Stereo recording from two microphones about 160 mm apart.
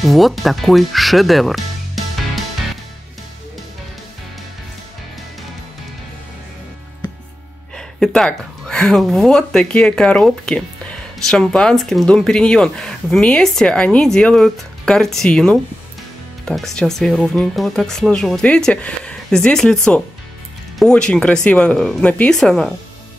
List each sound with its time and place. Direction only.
0.0 s speech: centre (ahead or behind)
7.7 s speech: 5° left (ahead or behind)